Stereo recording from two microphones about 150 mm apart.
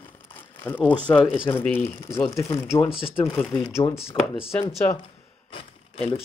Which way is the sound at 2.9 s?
40° left (ahead or behind).